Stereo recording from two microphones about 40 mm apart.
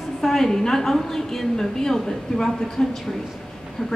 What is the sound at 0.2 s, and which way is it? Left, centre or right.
A woman's voice, centre.